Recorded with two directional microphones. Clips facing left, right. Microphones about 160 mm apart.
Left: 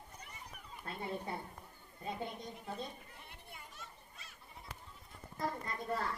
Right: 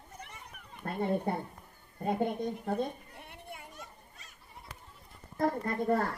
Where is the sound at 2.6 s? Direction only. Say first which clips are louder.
Right 11 dB; 55° right (ahead or behind).